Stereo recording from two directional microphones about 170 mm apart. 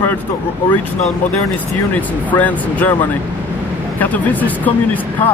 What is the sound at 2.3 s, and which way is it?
Speech, 10° left (ahead or behind).